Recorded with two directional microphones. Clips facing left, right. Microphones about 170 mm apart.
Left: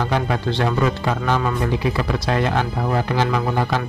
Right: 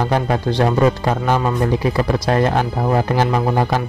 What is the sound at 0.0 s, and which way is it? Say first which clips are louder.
Speech: right 3 dB; 40° right (ahead or behind).